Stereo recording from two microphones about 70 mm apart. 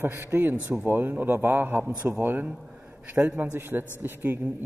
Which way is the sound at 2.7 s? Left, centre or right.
Right.